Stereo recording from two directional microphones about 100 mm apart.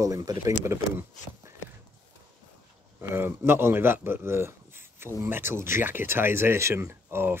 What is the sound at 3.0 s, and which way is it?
Speech, 25° right (ahead or behind).